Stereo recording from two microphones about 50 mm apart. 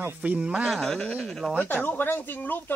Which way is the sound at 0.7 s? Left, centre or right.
Centre.